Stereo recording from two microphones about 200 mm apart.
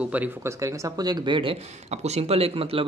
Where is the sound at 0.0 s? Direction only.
10° right (ahead or behind).